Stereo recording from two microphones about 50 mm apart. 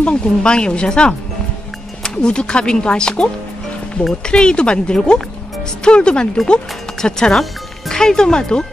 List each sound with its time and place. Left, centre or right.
0.0 s speech: left
4.3 s speech: centre